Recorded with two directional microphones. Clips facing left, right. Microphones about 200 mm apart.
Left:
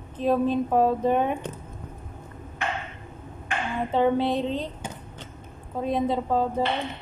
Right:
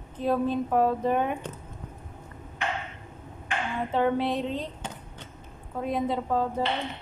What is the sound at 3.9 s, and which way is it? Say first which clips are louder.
Speech: left 3 dB; 30° left (ahead or behind).